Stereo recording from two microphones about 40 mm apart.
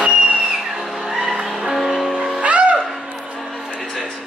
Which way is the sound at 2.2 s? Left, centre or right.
Right.